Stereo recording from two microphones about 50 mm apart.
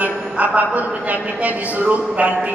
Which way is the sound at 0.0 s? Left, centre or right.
Right.